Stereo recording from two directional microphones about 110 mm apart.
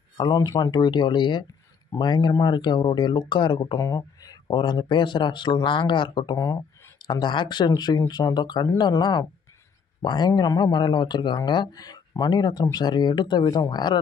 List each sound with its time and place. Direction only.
0.2 s speech: 35° left (ahead or behind)
6.3 s speech: 35° left (ahead or behind)